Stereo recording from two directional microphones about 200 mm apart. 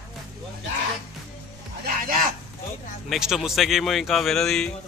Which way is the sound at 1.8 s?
45° right (ahead or behind).